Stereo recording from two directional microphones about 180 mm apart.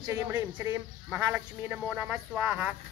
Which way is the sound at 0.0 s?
20° right (ahead or behind).